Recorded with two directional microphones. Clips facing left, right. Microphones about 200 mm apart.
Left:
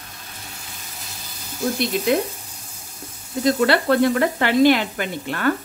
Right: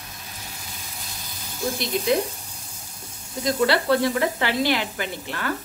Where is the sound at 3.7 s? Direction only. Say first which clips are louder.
Left 3 dB; 55° left (ahead or behind).